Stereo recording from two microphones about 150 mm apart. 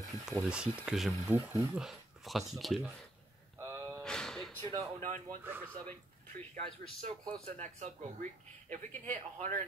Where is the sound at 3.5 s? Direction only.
20° right (ahead or behind).